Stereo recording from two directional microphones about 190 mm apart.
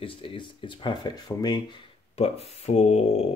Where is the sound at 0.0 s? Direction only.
30° left (ahead or behind).